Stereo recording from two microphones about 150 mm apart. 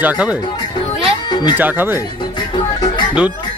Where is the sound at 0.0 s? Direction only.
10° right (ahead or behind).